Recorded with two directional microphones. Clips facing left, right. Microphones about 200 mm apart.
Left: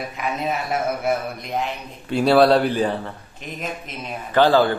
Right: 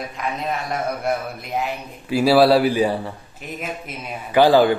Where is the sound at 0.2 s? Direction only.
5° left (ahead or behind).